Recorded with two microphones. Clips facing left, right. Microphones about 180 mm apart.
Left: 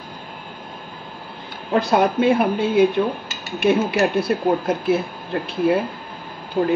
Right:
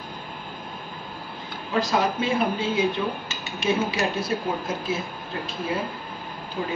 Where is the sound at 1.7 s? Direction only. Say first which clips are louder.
Left 6 dB; 60° left (ahead or behind).